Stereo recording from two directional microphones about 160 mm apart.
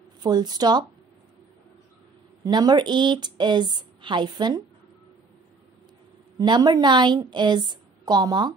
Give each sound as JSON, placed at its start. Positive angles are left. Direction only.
{"t": 0.2, "sound": "a woman's voice", "side_deg": -25}
{"t": 2.4, "sound": "a woman's voice", "side_deg": -25}
{"t": 6.3, "sound": "a woman's voice", "side_deg": -25}